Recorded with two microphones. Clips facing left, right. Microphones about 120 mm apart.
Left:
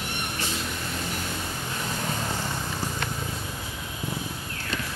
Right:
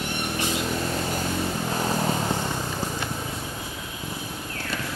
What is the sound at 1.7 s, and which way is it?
Vehicle, 35° right (ahead or behind).